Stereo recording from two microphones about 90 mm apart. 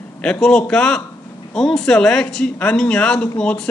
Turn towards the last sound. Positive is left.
turn(degrees=10)  # may be behind; listen again after turning